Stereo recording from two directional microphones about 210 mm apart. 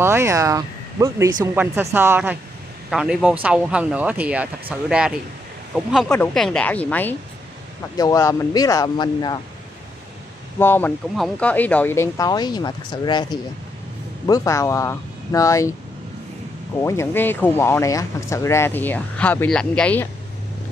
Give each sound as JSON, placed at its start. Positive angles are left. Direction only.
{"t": 0.0, "sound": "a man's voice", "side_deg": -10}
{"t": 10.6, "sound": "speech", "side_deg": 10}
{"t": 16.8, "sound": "speech", "side_deg": 15}